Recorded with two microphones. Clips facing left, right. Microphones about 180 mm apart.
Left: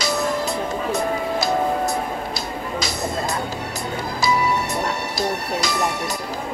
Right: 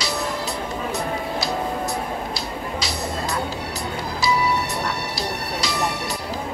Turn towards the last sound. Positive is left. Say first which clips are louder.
# left 2 dB
turn(degrees=50)  # may be behind; listen again after turning